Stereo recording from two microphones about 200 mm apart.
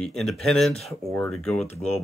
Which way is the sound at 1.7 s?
35° left (ahead or behind).